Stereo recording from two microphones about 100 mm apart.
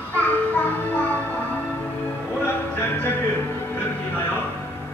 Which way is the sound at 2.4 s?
20° left (ahead or behind).